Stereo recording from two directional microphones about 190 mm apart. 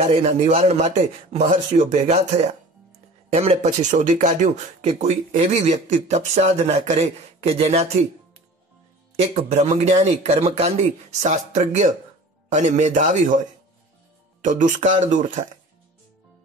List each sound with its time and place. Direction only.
0.0 s speech: 35° right (ahead or behind)
9.2 s speech: 35° right (ahead or behind)
14.4 s speech: 40° right (ahead or behind)